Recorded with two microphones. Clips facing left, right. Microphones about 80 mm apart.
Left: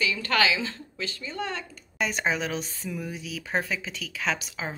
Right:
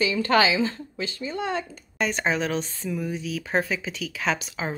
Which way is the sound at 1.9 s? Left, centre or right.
Centre.